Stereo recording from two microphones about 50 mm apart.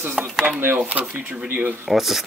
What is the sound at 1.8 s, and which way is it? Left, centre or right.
Speech, centre.